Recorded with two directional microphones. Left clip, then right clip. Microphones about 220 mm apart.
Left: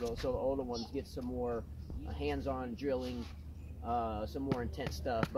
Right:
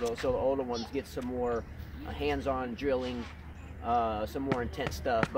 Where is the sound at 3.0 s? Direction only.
50° left (ahead or behind).